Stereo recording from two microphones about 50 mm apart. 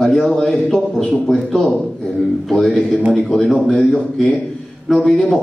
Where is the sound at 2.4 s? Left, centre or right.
Centre.